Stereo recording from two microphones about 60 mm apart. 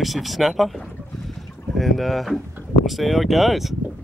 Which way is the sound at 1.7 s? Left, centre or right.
Centre.